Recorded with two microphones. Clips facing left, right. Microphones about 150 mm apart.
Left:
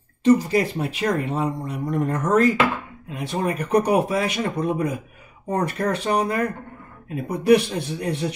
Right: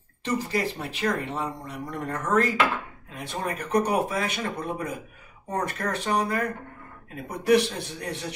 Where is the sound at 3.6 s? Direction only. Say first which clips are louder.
Left 4 dB; 10° left (ahead or behind).